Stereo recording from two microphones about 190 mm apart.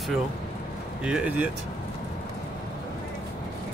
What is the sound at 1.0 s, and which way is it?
Speech, 5° right (ahead or behind).